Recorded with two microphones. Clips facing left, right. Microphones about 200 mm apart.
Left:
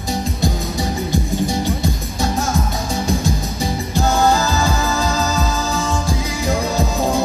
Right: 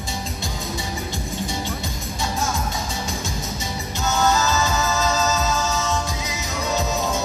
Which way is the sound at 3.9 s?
35° left (ahead or behind).